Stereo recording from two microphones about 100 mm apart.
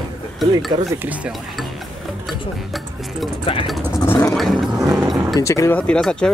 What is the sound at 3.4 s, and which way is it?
Speech, 60° left (ahead or behind).